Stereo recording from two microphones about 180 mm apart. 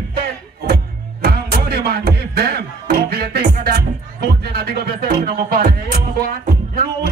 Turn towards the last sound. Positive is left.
turn(degrees=-60)  # may be behind; listen again after turning